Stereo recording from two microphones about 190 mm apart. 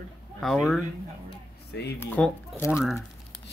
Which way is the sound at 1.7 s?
60° left (ahead or behind).